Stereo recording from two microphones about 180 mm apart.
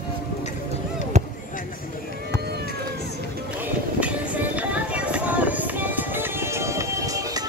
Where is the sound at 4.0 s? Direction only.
10° right (ahead or behind).